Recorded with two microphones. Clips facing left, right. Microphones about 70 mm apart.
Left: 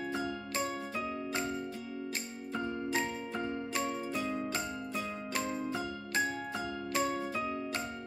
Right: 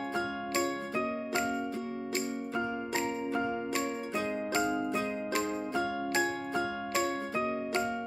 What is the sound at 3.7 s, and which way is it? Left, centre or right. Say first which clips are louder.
Music: right 2 dB; right.